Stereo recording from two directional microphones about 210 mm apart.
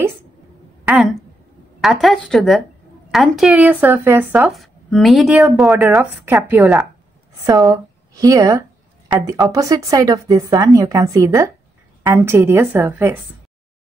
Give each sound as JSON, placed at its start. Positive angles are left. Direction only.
{"t": 0.8, "sound": "a woman's voice", "side_deg": -5}